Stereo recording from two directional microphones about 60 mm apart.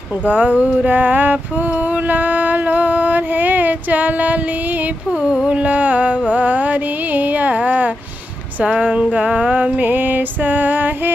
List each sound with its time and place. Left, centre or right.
0.3 s music: right
2.0 s a sound: right
5.2 s music: centre; by 10.9 s right